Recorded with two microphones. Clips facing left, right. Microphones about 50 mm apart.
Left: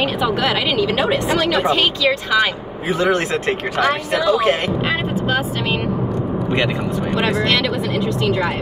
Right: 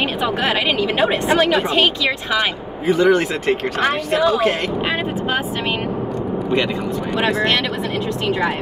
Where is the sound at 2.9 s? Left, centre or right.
Centre.